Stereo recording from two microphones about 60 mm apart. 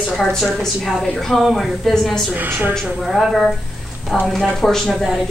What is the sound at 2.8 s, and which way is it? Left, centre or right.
A woman's voice, centre.